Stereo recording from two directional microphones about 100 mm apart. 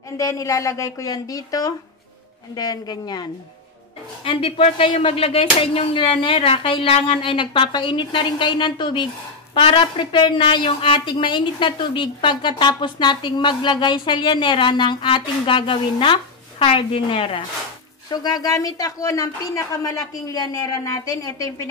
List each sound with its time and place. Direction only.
0.2 s a woman's voice: 35° left (ahead or behind)
4.2 s speech: 65° left (ahead or behind)
18.1 s a woman's voice: 40° left (ahead or behind)